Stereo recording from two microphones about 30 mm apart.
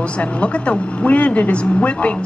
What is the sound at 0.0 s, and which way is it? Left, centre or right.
Speech, left.